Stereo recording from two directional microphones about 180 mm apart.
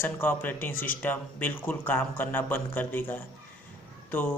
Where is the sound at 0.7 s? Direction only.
50° left (ahead or behind).